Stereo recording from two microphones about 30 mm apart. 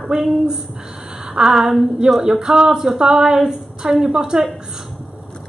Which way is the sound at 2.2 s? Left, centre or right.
Centre.